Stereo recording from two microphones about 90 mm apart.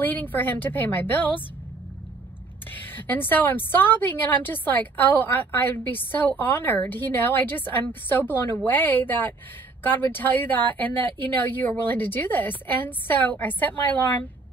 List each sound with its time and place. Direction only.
0.0 s a woman's voice: 20° left (ahead or behind)
2.7 s a woman's voice: 20° left (ahead or behind)